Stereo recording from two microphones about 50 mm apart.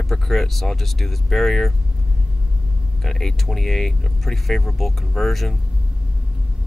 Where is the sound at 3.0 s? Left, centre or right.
Centre.